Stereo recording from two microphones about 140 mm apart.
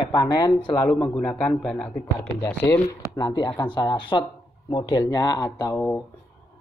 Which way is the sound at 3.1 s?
30° left (ahead or behind).